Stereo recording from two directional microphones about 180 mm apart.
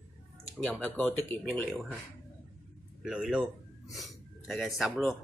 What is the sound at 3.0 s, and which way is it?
Speech, 5° right (ahead or behind).